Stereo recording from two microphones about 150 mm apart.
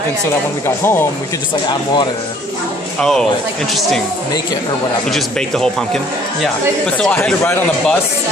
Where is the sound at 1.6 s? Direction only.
30° left (ahead or behind).